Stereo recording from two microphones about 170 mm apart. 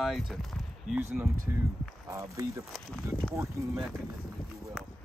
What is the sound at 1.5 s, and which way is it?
Speech, 15° right (ahead or behind).